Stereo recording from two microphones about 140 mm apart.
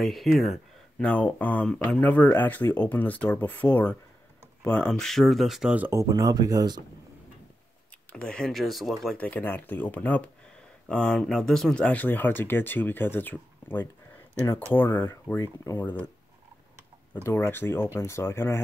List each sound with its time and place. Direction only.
0.0 s speech: centre (ahead or behind)
5.9 s speech: 20° right (ahead or behind)
8.1 s speech: 5° left (ahead or behind)
9.2 s speech: 10° left (ahead or behind)
17.2 s speech: 15° left (ahead or behind)